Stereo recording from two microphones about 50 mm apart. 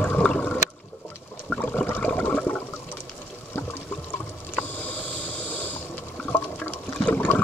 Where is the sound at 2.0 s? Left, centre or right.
Left.